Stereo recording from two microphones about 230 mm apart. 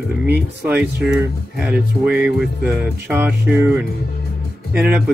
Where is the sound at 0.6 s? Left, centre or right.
Centre.